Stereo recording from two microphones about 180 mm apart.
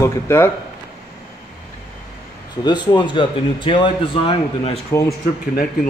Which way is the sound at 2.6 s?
25° left (ahead or behind).